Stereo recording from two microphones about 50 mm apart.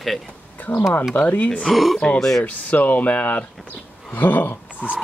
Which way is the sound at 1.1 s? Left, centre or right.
Left.